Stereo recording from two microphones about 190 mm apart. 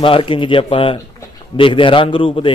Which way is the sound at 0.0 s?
25° left (ahead or behind).